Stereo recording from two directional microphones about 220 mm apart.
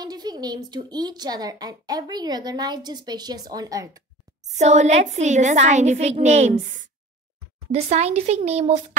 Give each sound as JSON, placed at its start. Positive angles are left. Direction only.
{"t": 0.0, "sound": "speech", "side_deg": -20}
{"t": 4.6, "sound": "a woman's voice", "side_deg": -30}